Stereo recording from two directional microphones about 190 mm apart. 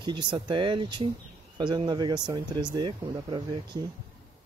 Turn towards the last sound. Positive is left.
turn(degrees=-20)  # may be behind; listen again after turning